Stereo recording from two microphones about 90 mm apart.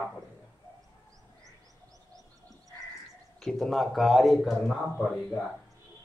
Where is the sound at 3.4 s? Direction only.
5° left (ahead or behind).